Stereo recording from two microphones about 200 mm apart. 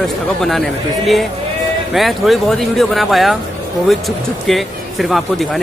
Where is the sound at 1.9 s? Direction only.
Centre (ahead or behind).